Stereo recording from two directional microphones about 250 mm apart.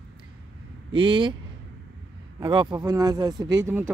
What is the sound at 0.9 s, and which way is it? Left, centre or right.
Speech, centre.